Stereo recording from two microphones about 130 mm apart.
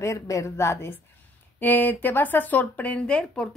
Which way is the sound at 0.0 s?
25° left (ahead or behind).